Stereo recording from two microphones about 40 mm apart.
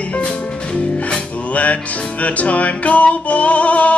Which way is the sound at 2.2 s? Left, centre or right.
Left.